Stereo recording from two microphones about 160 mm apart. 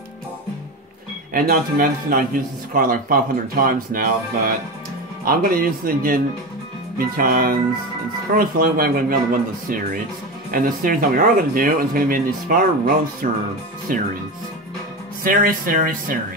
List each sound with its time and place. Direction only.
1.3 s a man's voice: 65° right (ahead or behind)
10.5 s a man's voice: 65° right (ahead or behind)
15.2 s a man's voice: 60° right (ahead or behind)